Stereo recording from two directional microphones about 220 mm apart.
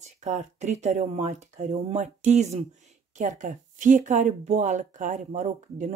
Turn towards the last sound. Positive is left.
turn(degrees=-35)  # may be behind; listen again after turning